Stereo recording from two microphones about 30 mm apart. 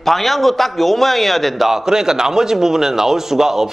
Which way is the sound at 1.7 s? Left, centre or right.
Centre.